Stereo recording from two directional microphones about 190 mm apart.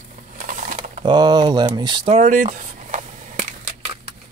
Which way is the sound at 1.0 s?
20° right (ahead or behind).